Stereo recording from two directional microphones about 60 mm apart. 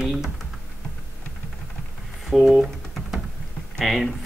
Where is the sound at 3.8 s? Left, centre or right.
Centre.